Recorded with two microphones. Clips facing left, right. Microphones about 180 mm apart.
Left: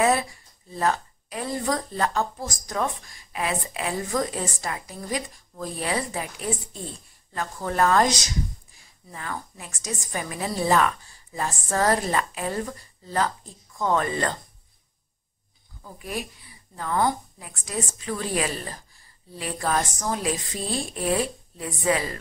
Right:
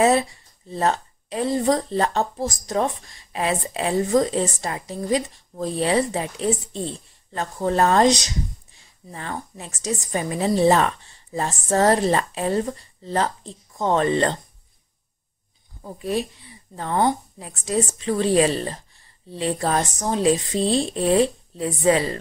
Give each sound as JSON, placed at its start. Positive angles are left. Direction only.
{"t": 0.0, "sound": "speech", "side_deg": -25}
{"t": 15.8, "sound": "speech", "side_deg": -30}